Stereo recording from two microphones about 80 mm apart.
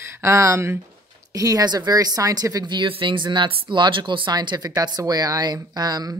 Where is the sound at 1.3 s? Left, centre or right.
Right.